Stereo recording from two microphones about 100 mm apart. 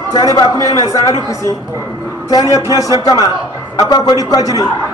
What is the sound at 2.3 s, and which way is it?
A man's voice, 40° left (ahead or behind).